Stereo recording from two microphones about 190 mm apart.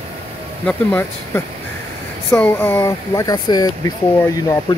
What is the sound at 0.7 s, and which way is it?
Speech, 10° left (ahead or behind).